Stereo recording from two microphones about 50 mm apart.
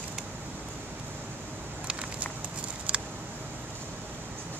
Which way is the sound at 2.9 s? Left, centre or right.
Right.